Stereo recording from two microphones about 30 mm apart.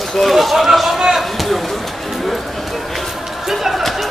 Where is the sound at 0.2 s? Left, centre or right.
Centre.